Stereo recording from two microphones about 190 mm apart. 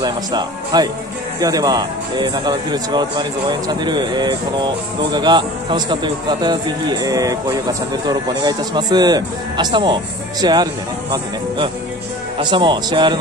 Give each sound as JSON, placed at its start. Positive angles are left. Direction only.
{"t": 0.0, "sound": "speech", "side_deg": -20}